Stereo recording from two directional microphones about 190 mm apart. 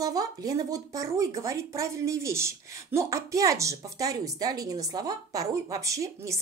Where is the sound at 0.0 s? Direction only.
20° right (ahead or behind).